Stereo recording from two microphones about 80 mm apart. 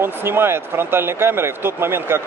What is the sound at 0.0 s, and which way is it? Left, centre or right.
Speech, right.